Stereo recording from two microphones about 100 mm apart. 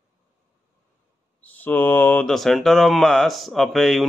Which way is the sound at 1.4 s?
15° left (ahead or behind).